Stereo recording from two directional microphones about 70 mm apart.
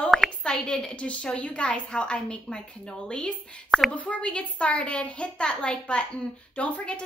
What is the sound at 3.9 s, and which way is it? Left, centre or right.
A woman's voice, centre.